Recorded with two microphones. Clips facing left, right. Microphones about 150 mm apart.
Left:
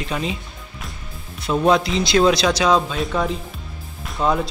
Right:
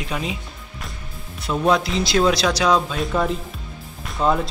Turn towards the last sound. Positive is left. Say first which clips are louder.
# even
turn(degrees=0)  # may be behind; listen again after turning